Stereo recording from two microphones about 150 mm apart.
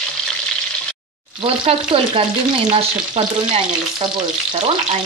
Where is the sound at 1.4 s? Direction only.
40° right (ahead or behind).